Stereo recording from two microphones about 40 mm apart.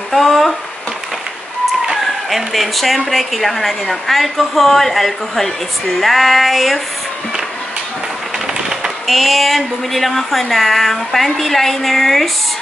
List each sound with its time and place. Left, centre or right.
0.1 s a sound: centre
2.2 s a woman's voice: centre
9.0 s a woman's voice: centre